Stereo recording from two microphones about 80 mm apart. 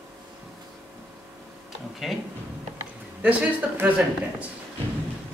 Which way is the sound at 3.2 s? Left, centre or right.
Right.